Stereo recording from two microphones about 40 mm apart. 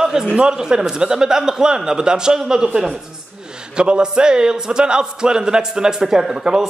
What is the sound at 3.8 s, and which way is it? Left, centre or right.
A man's voice, right.